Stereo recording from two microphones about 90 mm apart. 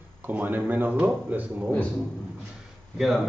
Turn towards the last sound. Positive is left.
turn(degrees=0)  # may be behind; listen again after turning